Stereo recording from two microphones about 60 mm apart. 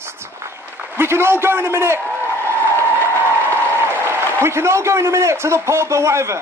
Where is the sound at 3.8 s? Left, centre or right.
Right.